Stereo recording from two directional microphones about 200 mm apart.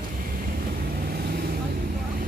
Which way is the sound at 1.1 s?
50° right (ahead or behind).